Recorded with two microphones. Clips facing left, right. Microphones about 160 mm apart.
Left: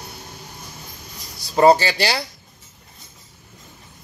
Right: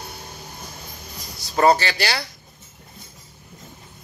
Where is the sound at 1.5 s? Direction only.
25° left (ahead or behind).